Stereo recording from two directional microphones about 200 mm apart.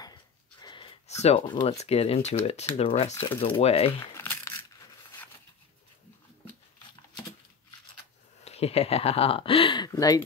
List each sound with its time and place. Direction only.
0.0 s a sound: 20° left (ahead or behind)
2.4 s speech: 30° left (ahead or behind)
4.0 s crumpling: 10° left (ahead or behind)
8.5 s speech: 30° left (ahead or behind)